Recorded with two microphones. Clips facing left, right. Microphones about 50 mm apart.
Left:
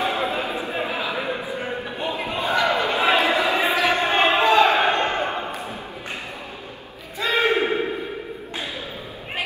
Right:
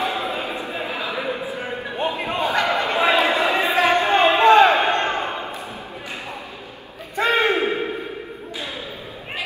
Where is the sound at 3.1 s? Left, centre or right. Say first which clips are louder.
Right 1 dB; right.